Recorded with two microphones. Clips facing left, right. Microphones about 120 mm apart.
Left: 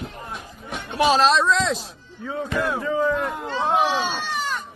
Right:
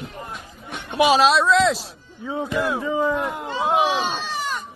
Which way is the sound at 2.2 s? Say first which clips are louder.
Right 1 dB; 15° right (ahead or behind).